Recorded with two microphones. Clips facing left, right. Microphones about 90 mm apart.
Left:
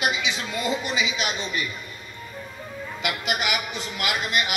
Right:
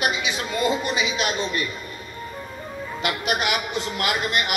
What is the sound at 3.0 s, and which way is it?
A woman's voice, 50° right (ahead or behind).